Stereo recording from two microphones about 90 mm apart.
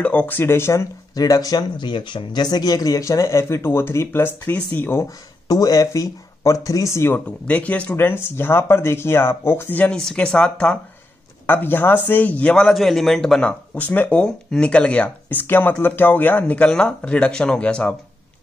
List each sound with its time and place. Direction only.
0.0 s speech: 15° left (ahead or behind)
5.5 s speech: 45° left (ahead or behind)
7.2 s speech: 15° left (ahead or behind)
9.9 s speech: 10° left (ahead or behind)
11.4 s speech: 25° left (ahead or behind); by 13.6 s 5° left (ahead or behind)
13.7 s speech: 20° left (ahead or behind)